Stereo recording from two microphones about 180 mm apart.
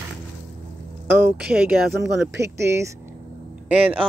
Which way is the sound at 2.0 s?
75° right (ahead or behind).